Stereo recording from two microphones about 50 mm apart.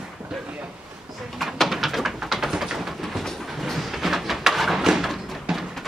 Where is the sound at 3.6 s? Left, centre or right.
Centre.